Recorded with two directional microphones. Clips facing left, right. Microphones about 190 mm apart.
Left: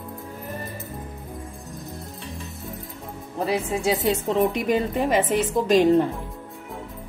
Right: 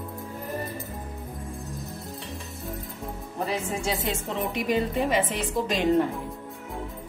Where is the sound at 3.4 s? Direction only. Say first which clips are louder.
Left 6 dB; 40° left (ahead or behind).